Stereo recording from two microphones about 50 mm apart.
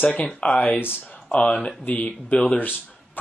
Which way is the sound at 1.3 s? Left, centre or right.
Left.